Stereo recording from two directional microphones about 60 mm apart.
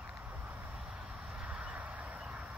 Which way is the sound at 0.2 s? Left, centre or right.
Right.